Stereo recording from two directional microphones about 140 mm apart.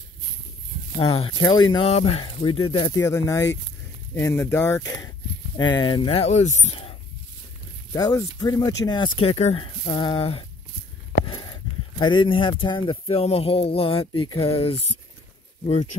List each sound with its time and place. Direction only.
0.9 s speech: 40° left (ahead or behind)
1.9 s speech: 45° left (ahead or behind)
2.9 s speech: 20° left (ahead or behind)
5.6 s speech: 30° left (ahead or behind)
6.1 s speech: 55° left (ahead or behind)
7.9 s speech: 25° left (ahead or behind); by 14.9 s 45° left (ahead or behind)